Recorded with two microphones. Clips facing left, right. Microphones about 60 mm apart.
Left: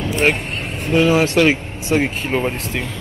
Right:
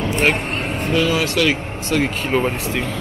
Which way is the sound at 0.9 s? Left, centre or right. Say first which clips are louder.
Left 5 dB; left.